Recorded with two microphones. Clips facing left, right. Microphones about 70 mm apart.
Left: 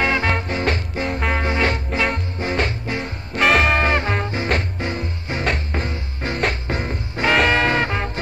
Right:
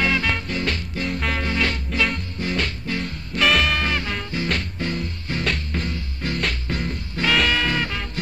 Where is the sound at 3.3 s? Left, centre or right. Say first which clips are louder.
Left 4 dB; left.